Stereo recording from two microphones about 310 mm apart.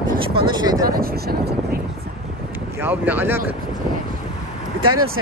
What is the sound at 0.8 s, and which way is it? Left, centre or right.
Speech, right.